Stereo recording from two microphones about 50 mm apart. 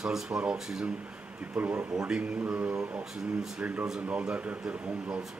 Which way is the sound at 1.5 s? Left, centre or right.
Right.